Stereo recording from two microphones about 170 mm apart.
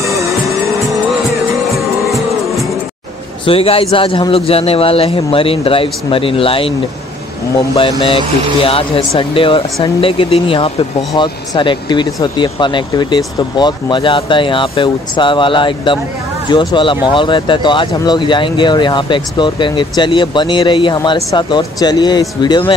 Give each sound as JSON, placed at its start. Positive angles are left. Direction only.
{"t": 0.0, "sound": "music", "side_deg": -20}
{"t": 1.8, "sound": "music", "side_deg": 0}
{"t": 3.4, "sound": "a man's voice", "side_deg": 35}
{"t": 7.7, "sound": "a man's voice", "side_deg": 30}